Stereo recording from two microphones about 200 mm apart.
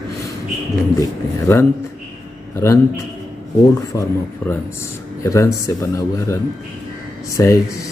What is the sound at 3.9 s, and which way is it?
A man's voice, 15° left (ahead or behind).